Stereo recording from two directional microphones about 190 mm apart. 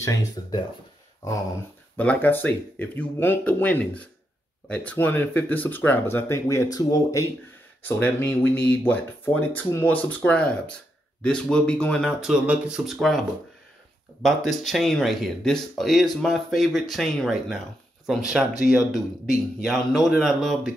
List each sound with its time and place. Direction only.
0.0 s speech: 20° left (ahead or behind)
2.0 s speech: 10° left (ahead or behind)
14.2 s speech: centre (ahead or behind)
19.6 s speech: centre (ahead or behind)